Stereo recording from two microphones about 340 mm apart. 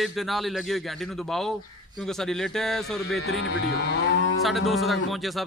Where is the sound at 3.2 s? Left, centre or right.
Left.